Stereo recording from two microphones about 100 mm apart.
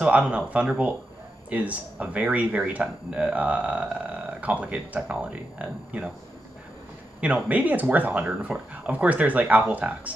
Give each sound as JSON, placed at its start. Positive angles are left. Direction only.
{"t": 0.0, "sound": "speech", "side_deg": -15}
{"t": 7.2, "sound": "speech", "side_deg": -15}